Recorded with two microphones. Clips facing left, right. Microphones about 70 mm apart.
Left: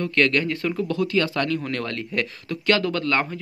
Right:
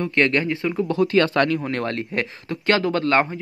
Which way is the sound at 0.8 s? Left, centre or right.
Right.